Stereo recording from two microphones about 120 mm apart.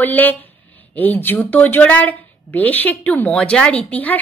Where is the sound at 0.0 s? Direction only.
15° left (ahead or behind).